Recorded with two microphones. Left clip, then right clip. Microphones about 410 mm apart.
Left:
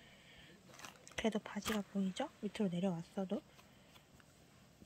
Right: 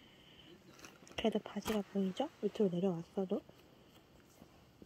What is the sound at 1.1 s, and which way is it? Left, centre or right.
Speech, centre.